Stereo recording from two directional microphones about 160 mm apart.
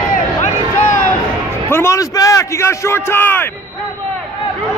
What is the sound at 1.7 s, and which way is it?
A man's voice, 20° left (ahead or behind).